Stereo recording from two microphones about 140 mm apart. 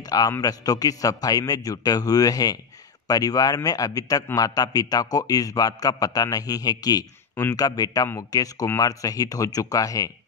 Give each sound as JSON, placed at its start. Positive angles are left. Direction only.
{"t": 0.0, "sound": "a man's voice", "side_deg": 25}